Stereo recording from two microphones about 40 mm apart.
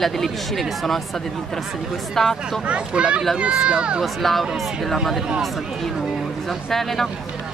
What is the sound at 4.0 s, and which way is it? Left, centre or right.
Speech, centre.